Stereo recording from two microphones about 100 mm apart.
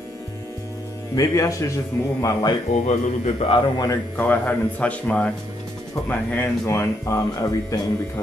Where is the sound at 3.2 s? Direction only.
65° left (ahead or behind).